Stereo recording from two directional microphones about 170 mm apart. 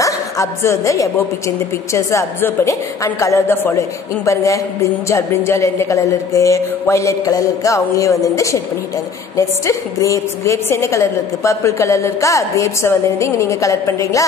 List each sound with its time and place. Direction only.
0.0 s a woman's voice: 15° left (ahead or behind)